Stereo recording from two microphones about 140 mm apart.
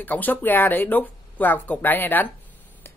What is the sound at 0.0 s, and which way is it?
Speech, 15° left (ahead or behind).